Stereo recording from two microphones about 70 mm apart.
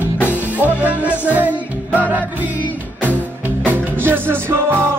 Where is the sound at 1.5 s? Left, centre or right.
Left.